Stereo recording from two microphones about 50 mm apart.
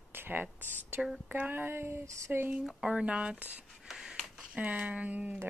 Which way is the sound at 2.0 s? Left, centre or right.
Right.